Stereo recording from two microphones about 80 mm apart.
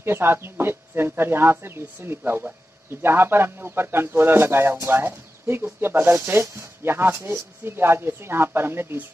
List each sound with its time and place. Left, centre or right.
0.0 s speech: right